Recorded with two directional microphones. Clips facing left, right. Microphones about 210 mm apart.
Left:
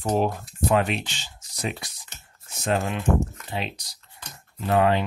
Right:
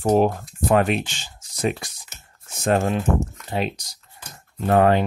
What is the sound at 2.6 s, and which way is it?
Speech, 45° right (ahead or behind).